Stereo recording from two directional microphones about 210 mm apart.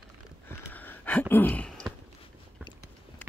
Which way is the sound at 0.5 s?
10° left (ahead or behind).